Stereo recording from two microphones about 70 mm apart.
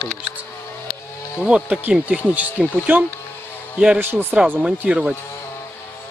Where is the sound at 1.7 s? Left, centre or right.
Right.